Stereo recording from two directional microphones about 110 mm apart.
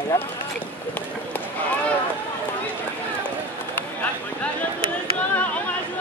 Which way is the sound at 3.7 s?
15° left (ahead or behind).